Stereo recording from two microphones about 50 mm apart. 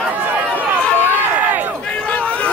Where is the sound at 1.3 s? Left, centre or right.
Right.